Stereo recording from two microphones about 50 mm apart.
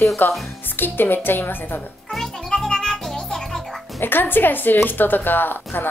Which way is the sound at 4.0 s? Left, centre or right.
Left.